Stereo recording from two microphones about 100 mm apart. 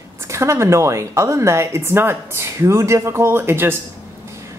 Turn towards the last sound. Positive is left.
turn(degrees=-25)  # may be behind; listen again after turning